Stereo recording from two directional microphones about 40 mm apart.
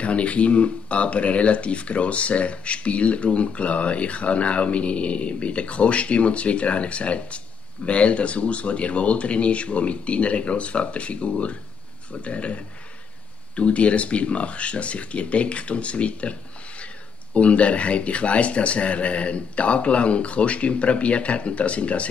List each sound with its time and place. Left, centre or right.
0.0 s speech: left